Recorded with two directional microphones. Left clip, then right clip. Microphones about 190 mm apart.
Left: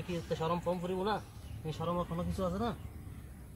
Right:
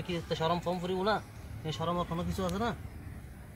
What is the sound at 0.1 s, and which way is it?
Speech, 15° right (ahead or behind).